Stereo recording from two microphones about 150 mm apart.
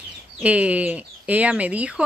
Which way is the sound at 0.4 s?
10° right (ahead or behind).